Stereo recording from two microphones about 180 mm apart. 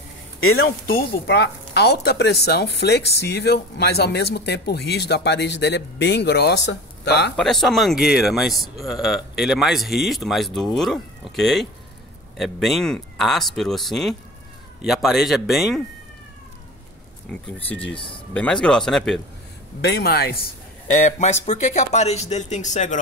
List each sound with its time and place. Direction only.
0.6 s speech: 55° left (ahead or behind)
7.3 s speech: centre (ahead or behind)
17.9 s speech: 30° left (ahead or behind)
18.3 s speech: 5° left (ahead or behind)
19.8 s speech: 65° left (ahead or behind)
20.9 s speech: 45° left (ahead or behind)